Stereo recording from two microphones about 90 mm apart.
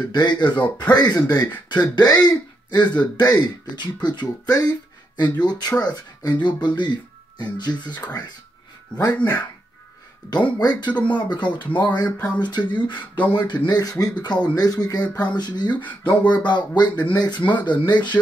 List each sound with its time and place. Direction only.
0.1 s speech: 55° left (ahead or behind)
4.6 s a sound: 45° left (ahead or behind)
5.4 s speech: 50° left (ahead or behind)
9.0 s speech: 45° left (ahead or behind)
10.6 s speech: 50° left (ahead or behind)
11.6 s speech: 20° left (ahead or behind)
11.9 s speech: 50° left (ahead or behind)
13.2 s speech: 20° left (ahead or behind)
13.7 s speech: 45° left (ahead or behind)
15.7 s speech: 20° left (ahead or behind)
16.4 s speech: 55° left (ahead or behind)
17.4 s speech: 15° left (ahead or behind)
17.6 s speech: 55° left (ahead or behind)